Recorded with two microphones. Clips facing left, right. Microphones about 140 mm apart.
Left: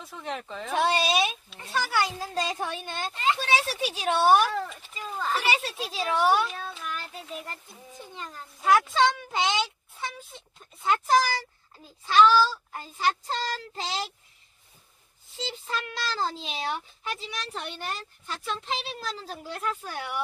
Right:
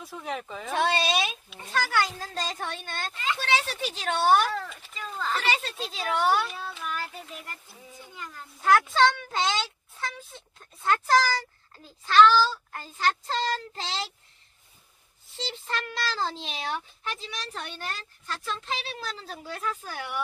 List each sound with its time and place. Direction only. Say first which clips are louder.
0.0 s speech: right 1 dB; 5° right (ahead or behind)
3.1 s speech: left 6 dB; 25° left (ahead or behind)
3.3 s speech: left 1 dB; 10° left (ahead or behind)
7.4 s music: left 2 dB; 25° left (ahead or behind)
8.5 s a sound: even; centre (ahead or behind)
8.9 s a child's voice: right 1 dB; 5° left (ahead or behind)
15.3 s speech: even; centre (ahead or behind)